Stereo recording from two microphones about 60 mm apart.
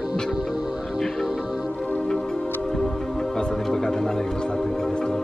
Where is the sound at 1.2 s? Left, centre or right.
Centre.